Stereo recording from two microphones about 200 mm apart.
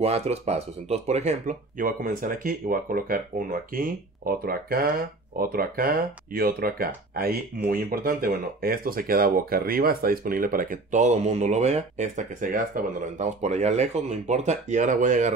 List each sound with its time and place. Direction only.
0.0 s speech: 30° right (ahead or behind)